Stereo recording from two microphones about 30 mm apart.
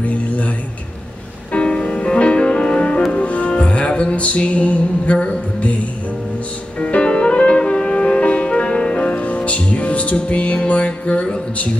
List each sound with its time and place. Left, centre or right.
0.0 s a sound: left
1.5 s music: left
7.0 s music: left
10.9 s music: left